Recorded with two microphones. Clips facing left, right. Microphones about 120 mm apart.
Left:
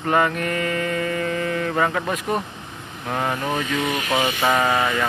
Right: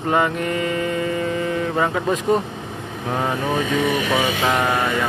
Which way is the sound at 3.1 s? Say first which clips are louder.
Right 2 dB; 25° right (ahead or behind).